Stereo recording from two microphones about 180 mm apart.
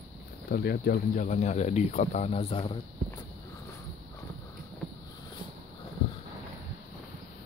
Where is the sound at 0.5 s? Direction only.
60° left (ahead or behind); by 2.7 s 35° left (ahead or behind).